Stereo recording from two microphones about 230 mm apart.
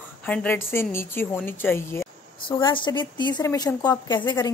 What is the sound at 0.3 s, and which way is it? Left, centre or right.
A woman's voice, centre.